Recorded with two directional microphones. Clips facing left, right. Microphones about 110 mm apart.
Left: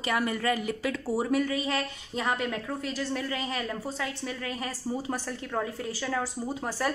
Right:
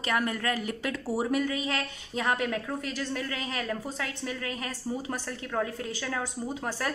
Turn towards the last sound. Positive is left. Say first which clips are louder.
# left 2 dB
turn(degrees=5)  # may be behind; listen again after turning